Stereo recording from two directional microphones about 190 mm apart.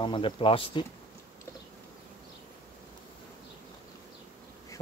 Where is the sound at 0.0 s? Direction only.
25° left (ahead or behind).